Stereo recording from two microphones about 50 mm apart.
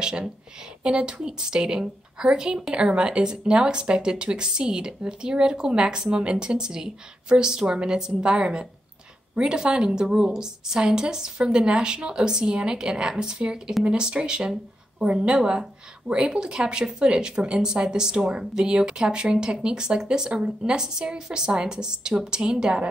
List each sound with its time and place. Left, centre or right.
0.8 s a woman's voice: centre